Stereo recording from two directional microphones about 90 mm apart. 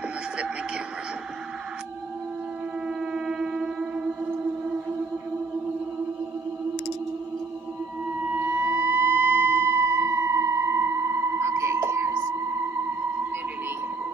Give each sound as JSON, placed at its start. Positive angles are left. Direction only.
{"t": 3.1, "sound": "civil defense siren", "side_deg": -5}
{"t": 8.4, "sound": "fire engine", "side_deg": -25}